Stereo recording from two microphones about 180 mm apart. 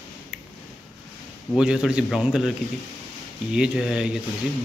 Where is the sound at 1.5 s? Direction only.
5° right (ahead or behind).